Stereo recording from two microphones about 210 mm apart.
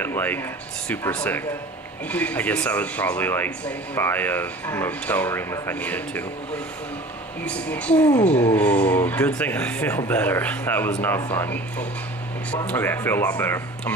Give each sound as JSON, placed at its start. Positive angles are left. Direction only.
{"t": 0.0, "sound": "speech", "side_deg": 10}
{"t": 7.4, "sound": "speech", "side_deg": 5}
{"t": 8.3, "sound": "a sound", "side_deg": 30}
{"t": 8.5, "sound": "speech", "side_deg": 10}
{"t": 12.6, "sound": "speech", "side_deg": 10}